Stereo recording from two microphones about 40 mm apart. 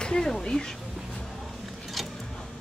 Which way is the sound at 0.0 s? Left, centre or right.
Centre.